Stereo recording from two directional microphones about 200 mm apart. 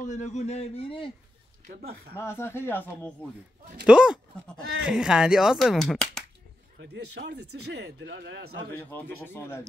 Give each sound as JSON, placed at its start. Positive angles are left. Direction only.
{"t": 0.0, "sound": "a man's voice", "side_deg": 35}
{"t": 1.7, "sound": "speech", "side_deg": -50}
{"t": 2.1, "sound": "speech", "side_deg": 10}
{"t": 3.8, "sound": "speech", "side_deg": -5}
{"t": 6.8, "sound": "speech", "side_deg": -60}
{"t": 8.7, "sound": "speech", "side_deg": 10}